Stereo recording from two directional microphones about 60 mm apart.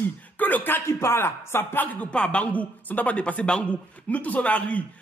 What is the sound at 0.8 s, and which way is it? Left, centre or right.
Speech, left.